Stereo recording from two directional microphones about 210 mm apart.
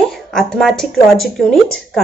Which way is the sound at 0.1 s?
Centre (ahead or behind).